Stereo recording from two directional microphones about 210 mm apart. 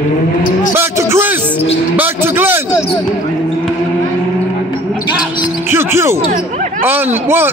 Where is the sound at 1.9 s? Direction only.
10° right (ahead or behind).